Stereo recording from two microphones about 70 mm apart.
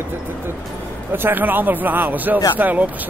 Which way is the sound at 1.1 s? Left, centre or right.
Right.